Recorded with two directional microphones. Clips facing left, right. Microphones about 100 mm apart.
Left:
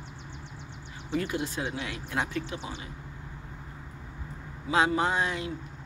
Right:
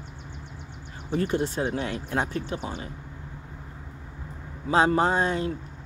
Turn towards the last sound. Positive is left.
turn(degrees=-35)  # may be behind; listen again after turning